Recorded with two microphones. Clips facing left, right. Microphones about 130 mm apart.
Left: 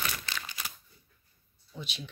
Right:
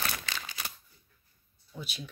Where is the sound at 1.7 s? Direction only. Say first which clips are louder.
Even; 5° right (ahead or behind).